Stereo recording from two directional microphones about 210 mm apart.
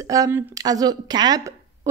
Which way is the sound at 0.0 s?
15° right (ahead or behind).